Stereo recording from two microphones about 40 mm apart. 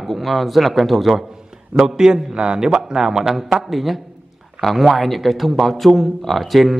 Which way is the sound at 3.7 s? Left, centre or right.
Centre.